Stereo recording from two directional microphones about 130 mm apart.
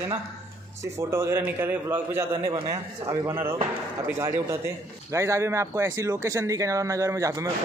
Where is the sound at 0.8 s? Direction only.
20° right (ahead or behind).